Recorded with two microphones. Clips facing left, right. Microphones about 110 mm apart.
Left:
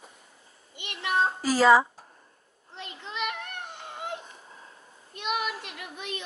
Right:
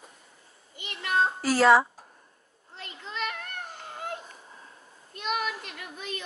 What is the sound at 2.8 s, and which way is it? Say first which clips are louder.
Children playing: left 1 dB; 5° left (ahead or behind).